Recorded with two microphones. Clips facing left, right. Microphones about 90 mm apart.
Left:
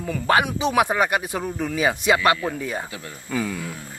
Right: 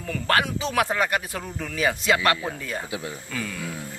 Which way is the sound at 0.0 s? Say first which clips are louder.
Left 3 dB; 15° left (ahead or behind).